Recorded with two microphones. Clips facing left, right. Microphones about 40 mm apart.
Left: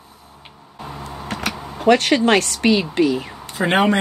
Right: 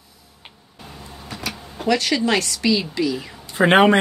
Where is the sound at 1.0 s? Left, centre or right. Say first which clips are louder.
Left 5 dB; left.